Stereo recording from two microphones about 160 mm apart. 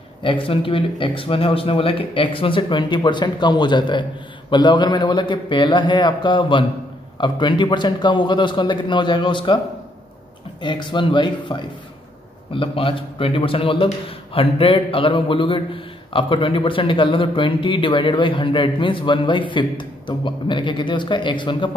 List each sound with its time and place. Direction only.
0.2 s a man's voice: 35° left (ahead or behind)
10.6 s a man's voice: 30° left (ahead or behind)